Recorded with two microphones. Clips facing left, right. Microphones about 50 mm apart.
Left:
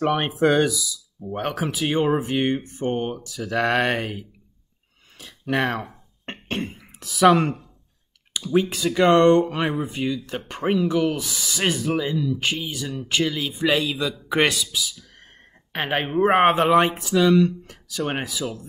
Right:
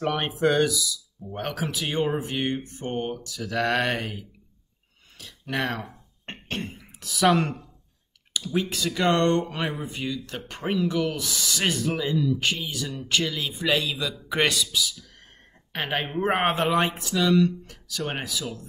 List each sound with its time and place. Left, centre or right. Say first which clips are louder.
0.0 s speech: left 4 dB; centre
5.5 s speech: left 5 dB; centre
6.2 s cough: left 4 dB; left
6.6 s speech: left 4 dB; centre
8.5 s speech: left 7 dB; centre